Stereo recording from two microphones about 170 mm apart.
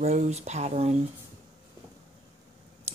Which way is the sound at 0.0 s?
40° right (ahead or behind).